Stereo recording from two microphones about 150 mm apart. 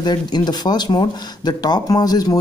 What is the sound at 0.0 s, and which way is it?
Speech, 30° left (ahead or behind).